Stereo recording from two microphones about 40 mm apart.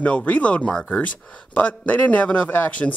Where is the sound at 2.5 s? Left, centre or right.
Left.